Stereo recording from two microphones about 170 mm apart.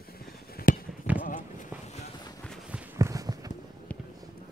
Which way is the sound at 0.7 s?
55° left (ahead or behind).